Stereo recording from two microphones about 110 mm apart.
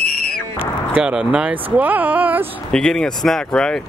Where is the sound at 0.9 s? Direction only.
10° right (ahead or behind).